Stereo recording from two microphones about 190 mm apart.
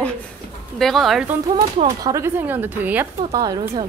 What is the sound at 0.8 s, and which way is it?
Speech, centre (ahead or behind).